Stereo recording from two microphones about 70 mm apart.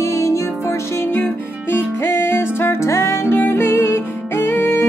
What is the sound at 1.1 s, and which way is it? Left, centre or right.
Music, left.